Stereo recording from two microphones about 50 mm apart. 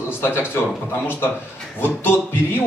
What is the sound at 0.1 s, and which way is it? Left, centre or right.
Speech, left.